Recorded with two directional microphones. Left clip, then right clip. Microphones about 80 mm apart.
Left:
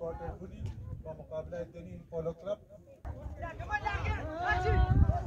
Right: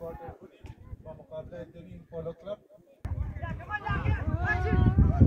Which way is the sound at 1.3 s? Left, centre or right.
Centre.